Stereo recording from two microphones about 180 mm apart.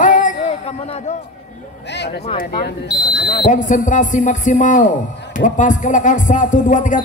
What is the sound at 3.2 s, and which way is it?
Speech, 70° left (ahead or behind).